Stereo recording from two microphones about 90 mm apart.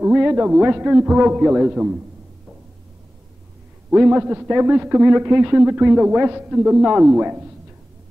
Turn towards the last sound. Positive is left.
turn(degrees=-20)  # may be behind; listen again after turning